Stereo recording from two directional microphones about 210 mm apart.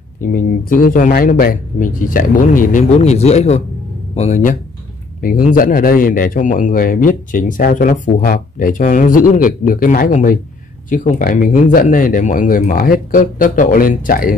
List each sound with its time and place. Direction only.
0.2 s a man's voice: 40° left (ahead or behind)